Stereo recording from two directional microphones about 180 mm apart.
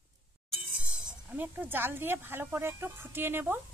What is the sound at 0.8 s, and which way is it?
Speech, 5° right (ahead or behind).